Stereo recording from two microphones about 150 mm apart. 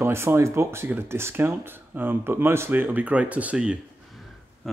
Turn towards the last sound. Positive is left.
turn(degrees=-5)  # may be behind; listen again after turning